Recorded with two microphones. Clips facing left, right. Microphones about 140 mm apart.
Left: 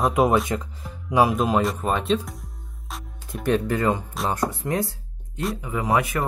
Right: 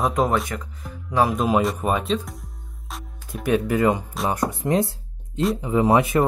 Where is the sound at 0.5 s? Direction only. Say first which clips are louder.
Left 4 dB; 20° left (ahead or behind).